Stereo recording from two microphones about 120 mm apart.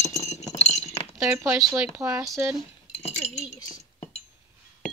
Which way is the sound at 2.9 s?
60° left (ahead or behind).